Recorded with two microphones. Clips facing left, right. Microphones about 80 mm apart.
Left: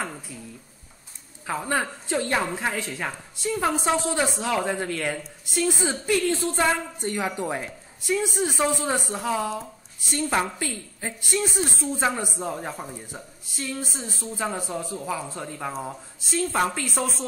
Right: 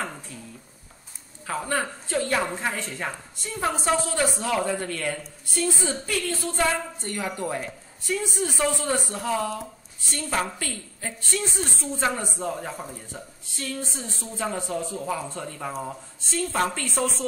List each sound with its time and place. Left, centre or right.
1.7 s speech: centre
14.4 s a woman's voice: centre